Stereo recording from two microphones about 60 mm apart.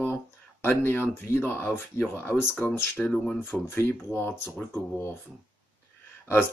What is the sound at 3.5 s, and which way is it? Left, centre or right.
Speech, left.